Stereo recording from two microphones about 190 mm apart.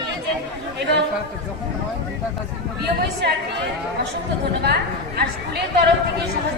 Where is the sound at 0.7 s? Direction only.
60° right (ahead or behind).